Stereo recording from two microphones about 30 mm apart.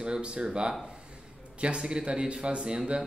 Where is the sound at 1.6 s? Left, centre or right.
Right.